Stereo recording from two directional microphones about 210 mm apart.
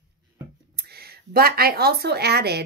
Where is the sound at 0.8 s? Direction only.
50° right (ahead or behind).